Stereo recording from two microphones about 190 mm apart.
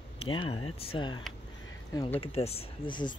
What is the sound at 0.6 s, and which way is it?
Speech, 25° left (ahead or behind).